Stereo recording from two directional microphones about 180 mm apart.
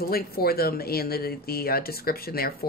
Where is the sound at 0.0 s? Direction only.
55° left (ahead or behind).